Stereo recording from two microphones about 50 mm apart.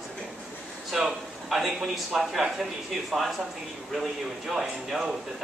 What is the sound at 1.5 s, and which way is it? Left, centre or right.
Speech, centre.